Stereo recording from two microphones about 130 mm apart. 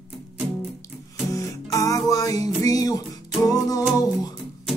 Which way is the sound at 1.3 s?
25° left (ahead or behind).